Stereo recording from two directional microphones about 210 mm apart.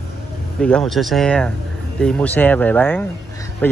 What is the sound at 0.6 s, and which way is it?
Speech, 5° left (ahead or behind).